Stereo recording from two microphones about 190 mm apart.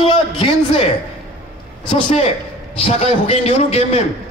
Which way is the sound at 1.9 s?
40° left (ahead or behind).